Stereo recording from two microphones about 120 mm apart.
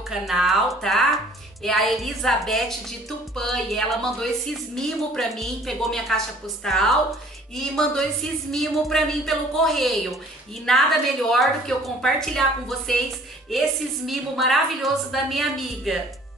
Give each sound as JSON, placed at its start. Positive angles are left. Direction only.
{"t": 0.1, "sound": "speech", "side_deg": -5}
{"t": 14.0, "sound": "speech", "side_deg": 0}